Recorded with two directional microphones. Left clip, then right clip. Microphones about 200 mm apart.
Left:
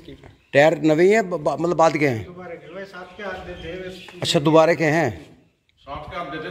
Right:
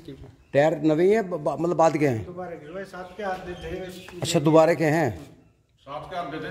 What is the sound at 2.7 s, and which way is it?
Speech, 50° right (ahead or behind).